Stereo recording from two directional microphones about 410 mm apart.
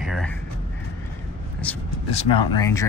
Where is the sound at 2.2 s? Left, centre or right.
Left.